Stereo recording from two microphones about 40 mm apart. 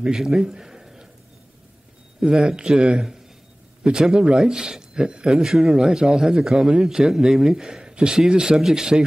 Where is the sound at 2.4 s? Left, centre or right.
Centre.